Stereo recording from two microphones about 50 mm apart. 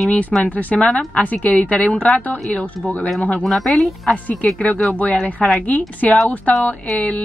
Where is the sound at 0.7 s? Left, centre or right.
Centre.